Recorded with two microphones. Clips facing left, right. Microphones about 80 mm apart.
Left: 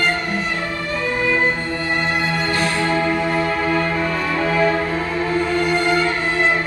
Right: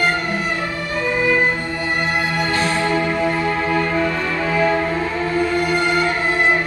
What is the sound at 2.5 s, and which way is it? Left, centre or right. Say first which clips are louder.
Music: right 1 dB; right.